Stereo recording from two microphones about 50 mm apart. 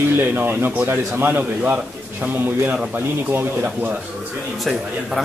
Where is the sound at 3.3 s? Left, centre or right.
Right.